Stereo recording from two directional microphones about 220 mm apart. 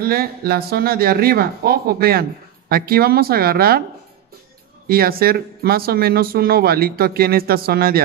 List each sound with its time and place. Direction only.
0.0 s speech: 45° right (ahead or behind)
4.8 s speech: 45° right (ahead or behind)